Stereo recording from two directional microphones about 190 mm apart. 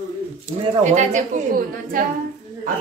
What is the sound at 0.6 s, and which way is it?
Speech, 40° right (ahead or behind).